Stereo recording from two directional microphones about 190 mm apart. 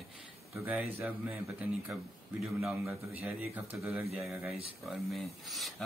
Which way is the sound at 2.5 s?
10° right (ahead or behind).